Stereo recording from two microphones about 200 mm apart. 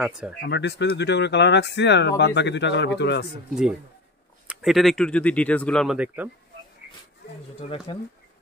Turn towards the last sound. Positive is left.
turn(degrees=30)  # may be behind; listen again after turning